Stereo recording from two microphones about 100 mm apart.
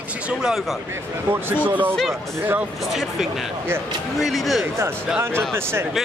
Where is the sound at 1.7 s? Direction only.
15° right (ahead or behind).